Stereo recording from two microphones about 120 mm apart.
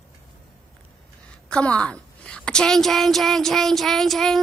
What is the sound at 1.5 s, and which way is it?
A woman's voice, 10° left (ahead or behind).